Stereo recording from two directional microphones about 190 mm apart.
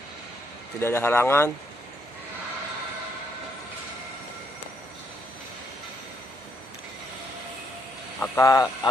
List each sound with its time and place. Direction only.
0.7 s speech: 10° left (ahead or behind)
8.2 s speech: 15° left (ahead or behind)